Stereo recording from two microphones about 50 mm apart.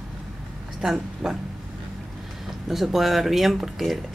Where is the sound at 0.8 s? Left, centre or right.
Centre.